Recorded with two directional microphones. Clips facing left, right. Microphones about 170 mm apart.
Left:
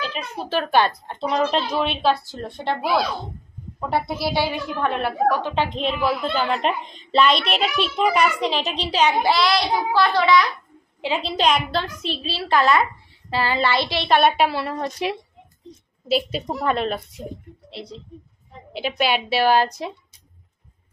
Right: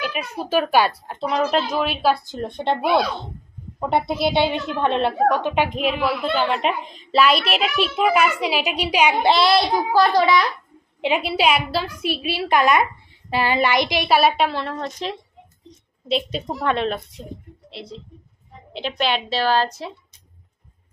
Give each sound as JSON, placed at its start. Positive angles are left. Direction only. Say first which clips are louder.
{"t": 0.0, "sound": "a woman's voice", "louder": "right 2 dB", "side_deg": -10}
{"t": 2.2, "sound": "a woman's voice", "louder": "right 3 dB", "side_deg": -20}
{"t": 3.8, "sound": "a woman's voice", "louder": "right 3 dB", "side_deg": -20}
{"t": 9.2, "sound": "a woman's voice", "louder": "right 3 dB", "side_deg": -25}
{"t": 9.9, "sound": "a child's voice", "louder": "right 4 dB", "side_deg": -40}
{"t": 11.0, "sound": "a woman's voice", "louder": "right 3 dB", "side_deg": -15}